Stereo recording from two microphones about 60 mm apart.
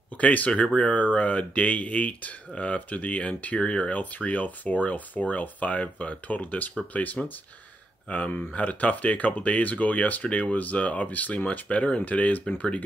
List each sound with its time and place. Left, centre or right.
0.2 s speech: left